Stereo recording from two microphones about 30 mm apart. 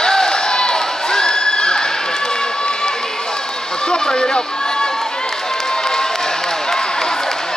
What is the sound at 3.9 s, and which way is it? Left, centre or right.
Speech, left.